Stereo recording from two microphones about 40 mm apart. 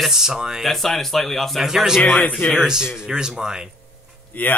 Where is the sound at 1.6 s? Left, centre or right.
Centre.